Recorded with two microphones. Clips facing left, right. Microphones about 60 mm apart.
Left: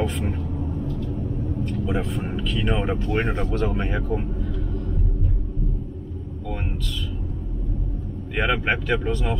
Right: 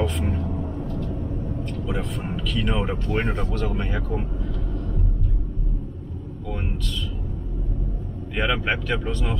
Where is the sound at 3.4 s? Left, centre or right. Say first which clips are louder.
Left 3 dB; centre.